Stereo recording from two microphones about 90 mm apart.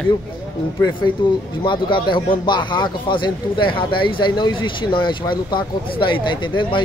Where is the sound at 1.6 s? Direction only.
65° left (ahead or behind).